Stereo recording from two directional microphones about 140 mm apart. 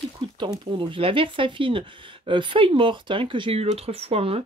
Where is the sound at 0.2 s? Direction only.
40° right (ahead or behind).